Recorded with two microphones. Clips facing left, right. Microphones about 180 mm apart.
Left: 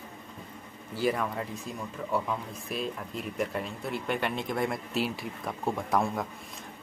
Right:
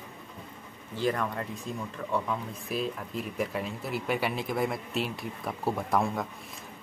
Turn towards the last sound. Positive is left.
turn(degrees=0)  # may be behind; listen again after turning